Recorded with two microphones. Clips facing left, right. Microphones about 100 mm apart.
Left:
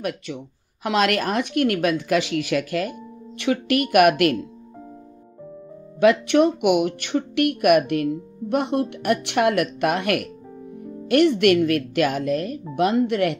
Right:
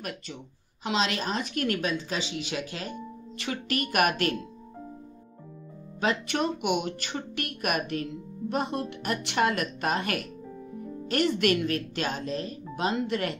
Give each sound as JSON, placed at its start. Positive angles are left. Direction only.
{"t": 0.3, "sound": "a woman's voice", "side_deg": 70}
{"t": 2.6, "sound": "speech", "side_deg": -25}
{"t": 3.9, "sound": "a woman's voice", "side_deg": 60}
{"t": 5.9, "sound": "a woman's voice", "side_deg": 65}
{"t": 6.6, "sound": "speech", "side_deg": -30}
{"t": 7.0, "sound": "a woman's voice", "side_deg": 60}